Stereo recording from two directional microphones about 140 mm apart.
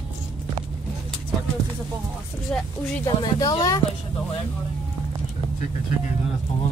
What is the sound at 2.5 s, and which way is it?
Speech, 5° left (ahead or behind).